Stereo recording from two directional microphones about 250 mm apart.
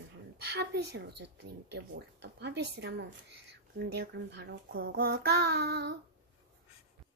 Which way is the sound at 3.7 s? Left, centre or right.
Right.